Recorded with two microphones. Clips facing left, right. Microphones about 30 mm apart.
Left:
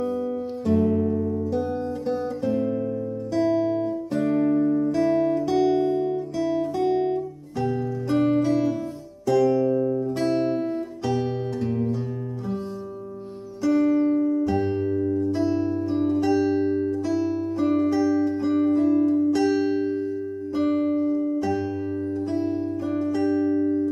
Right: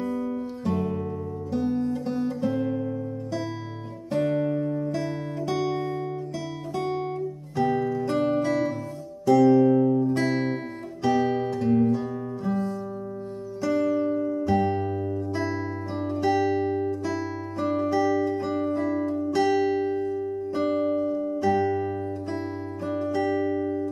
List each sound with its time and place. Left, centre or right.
0.7 s music: centre
1.8 s guitar: centre
3.3 s music: centre
4.1 s music: centre
5.0 s music: centre
7.6 s music: right
8.1 s music: centre
11.1 s guitar: centre
13.6 s music: centre
13.8 s music: centre
14.3 s music: centre
21.1 s music: centre
22.8 s music: centre